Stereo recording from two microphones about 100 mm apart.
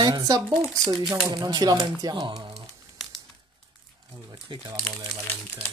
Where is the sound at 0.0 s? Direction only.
40° right (ahead or behind).